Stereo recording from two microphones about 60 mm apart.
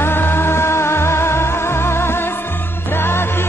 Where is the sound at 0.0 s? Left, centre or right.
Left.